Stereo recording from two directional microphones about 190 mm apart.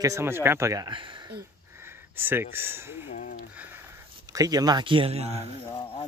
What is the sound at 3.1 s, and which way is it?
Speech, 45° left (ahead or behind).